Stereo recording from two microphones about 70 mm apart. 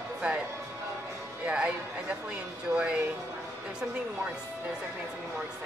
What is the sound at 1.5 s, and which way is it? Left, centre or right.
Music, centre.